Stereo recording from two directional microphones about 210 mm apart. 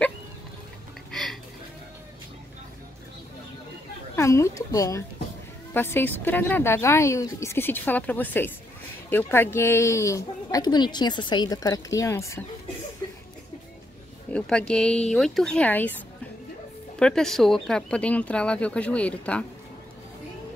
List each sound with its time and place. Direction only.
1.1 s a sound: centre (ahead or behind)
4.1 s speech: 15° left (ahead or behind)
14.3 s speech: 5° left (ahead or behind)
17.0 s speech: 5° left (ahead or behind)